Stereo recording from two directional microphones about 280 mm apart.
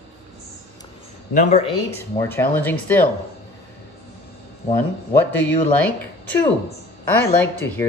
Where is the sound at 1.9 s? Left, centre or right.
Centre.